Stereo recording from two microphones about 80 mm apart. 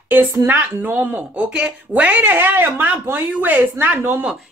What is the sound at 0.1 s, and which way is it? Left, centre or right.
A woman's voice, right.